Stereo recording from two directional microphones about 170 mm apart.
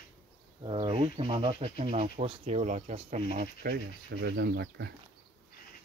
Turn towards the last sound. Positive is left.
turn(degrees=-85)